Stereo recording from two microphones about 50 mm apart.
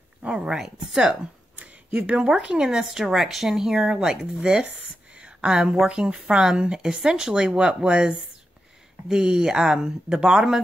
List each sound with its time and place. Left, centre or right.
0.2 s a sound: right
0.5 s speech: centre
1.6 s speech: right
5.1 s a sound: right
5.9 s speech: right
9.1 s speech: centre